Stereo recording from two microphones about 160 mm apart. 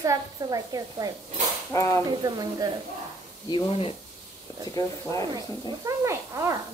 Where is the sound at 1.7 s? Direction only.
20° left (ahead or behind).